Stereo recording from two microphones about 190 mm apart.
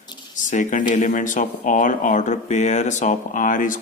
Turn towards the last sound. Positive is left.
turn(degrees=45)  # may be behind; listen again after turning